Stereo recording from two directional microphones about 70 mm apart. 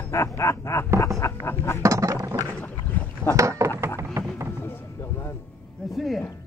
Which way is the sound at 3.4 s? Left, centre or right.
Right.